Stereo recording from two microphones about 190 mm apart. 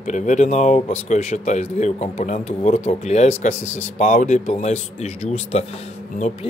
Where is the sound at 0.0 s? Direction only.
40° left (ahead or behind).